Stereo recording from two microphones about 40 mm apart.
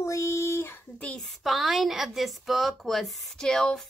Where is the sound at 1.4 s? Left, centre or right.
Centre.